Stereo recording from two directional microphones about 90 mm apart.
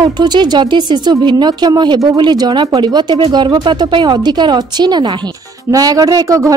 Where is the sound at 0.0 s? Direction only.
50° right (ahead or behind).